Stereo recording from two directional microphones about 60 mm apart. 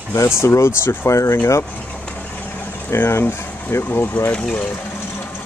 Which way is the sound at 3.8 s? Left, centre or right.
Left.